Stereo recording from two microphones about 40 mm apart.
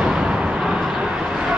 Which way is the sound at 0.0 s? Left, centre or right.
Centre.